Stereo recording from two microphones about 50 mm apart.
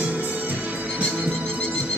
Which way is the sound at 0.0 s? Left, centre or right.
Right.